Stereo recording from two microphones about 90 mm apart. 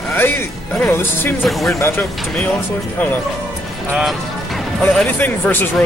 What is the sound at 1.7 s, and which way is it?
Speech, 30° left (ahead or behind).